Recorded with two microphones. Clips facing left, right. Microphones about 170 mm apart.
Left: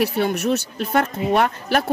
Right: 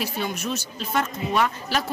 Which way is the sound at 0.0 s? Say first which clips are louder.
Left 8 dB; 65° left (ahead or behind).